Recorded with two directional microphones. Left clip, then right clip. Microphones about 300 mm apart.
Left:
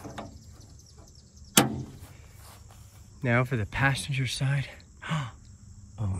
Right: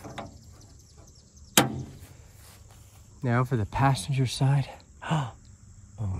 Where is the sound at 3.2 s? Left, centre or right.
Centre.